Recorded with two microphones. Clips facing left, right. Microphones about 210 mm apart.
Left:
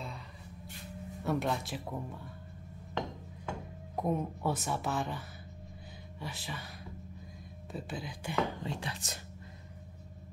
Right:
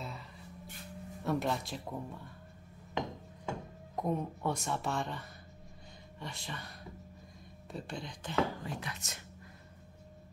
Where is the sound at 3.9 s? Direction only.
5° left (ahead or behind).